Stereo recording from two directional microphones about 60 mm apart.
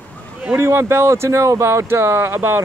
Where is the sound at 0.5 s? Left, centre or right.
Right.